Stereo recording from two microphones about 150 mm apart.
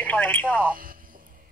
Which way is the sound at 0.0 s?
10° left (ahead or behind).